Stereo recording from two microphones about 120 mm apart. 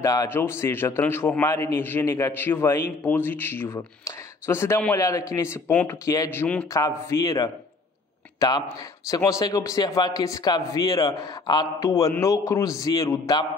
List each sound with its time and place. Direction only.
0.0 s a man's voice: 30° left (ahead or behind); by 6.7 s 15° left (ahead or behind)
6.7 s a man's voice: 25° left (ahead or behind)